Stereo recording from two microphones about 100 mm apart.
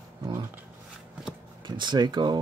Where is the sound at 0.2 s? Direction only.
30° right (ahead or behind).